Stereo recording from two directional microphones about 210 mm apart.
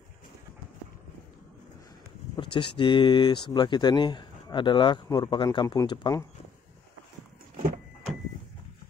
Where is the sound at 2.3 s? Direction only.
25° left (ahead or behind).